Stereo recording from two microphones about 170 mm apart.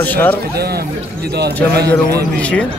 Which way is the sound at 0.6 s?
70° right (ahead or behind).